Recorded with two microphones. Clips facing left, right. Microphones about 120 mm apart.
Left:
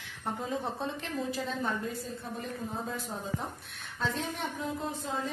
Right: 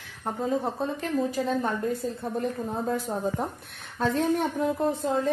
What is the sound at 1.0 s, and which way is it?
Speech, 40° right (ahead or behind).